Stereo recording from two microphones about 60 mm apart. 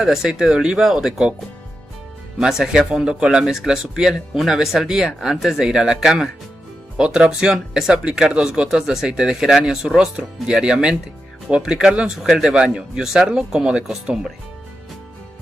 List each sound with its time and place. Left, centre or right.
0.0 s speech: centre
2.3 s speech: centre